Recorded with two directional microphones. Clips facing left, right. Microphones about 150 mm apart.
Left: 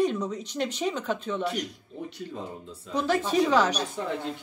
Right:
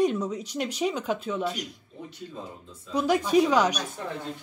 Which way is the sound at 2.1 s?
75° left (ahead or behind).